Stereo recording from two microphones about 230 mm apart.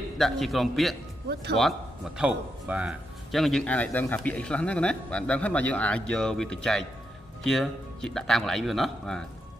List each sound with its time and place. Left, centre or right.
0.2 s a man's voice: centre
1.3 s speech: right
1.6 s a man's voice: centre